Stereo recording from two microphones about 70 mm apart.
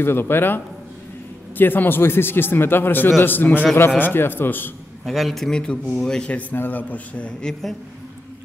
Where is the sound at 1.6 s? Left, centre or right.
Left.